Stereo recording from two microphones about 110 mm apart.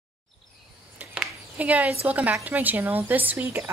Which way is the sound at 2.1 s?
15° right (ahead or behind).